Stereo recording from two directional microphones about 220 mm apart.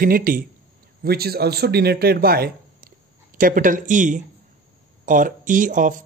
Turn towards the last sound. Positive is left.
turn(degrees=-35)  # may be behind; listen again after turning